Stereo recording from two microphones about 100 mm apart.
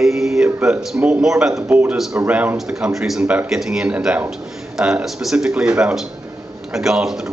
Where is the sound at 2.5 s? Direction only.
5° right (ahead or behind).